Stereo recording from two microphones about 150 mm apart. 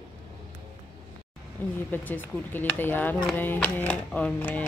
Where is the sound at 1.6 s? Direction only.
10° left (ahead or behind).